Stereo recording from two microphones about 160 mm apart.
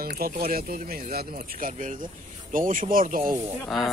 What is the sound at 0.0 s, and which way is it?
Speech, 70° right (ahead or behind).